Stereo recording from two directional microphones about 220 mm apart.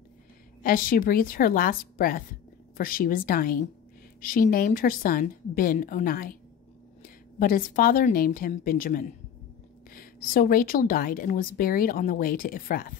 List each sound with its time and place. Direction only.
0.6 s a woman's voice: 40° left (ahead or behind)